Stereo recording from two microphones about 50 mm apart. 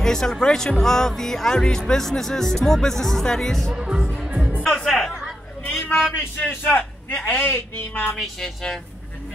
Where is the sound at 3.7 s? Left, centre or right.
Centre.